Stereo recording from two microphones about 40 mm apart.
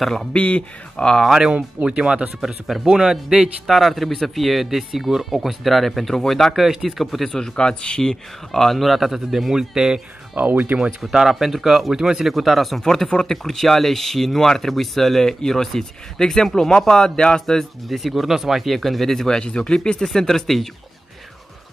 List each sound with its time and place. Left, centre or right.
0.0 s speech: centre
0.3 s speech: left
1.9 s speech: right
3.6 s speech: centre
6.7 s speech: centre
7.0 s speech: centre
7.3 s speech: centre
9.5 s speech: centre
10.3 s speech: right
11.0 s speech: centre
12.3 s speech: centre
17.8 s speech: centre